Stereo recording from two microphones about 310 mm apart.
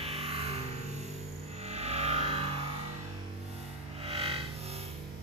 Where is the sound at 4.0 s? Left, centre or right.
Centre.